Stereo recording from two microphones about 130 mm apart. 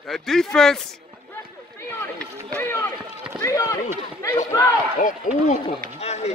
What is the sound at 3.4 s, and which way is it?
Speech, 25° left (ahead or behind).